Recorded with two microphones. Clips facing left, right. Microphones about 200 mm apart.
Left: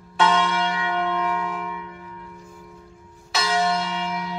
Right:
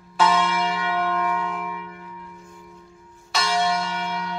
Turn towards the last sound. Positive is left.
turn(degrees=5)  # may be behind; listen again after turning